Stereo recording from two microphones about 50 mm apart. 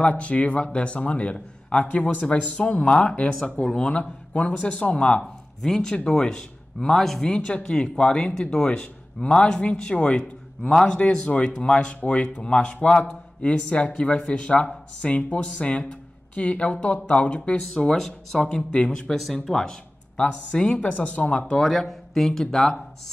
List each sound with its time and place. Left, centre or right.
0.0 s speech: left
5.6 s speech: centre
7.3 s speech: centre
15.9 s a sound: left
16.8 s speech: left
17.7 s speech: centre
18.4 s speech: left
20.2 s speech: left
21.5 s speech: centre